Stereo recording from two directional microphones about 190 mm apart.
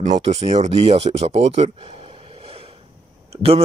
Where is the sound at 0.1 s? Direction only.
35° right (ahead or behind).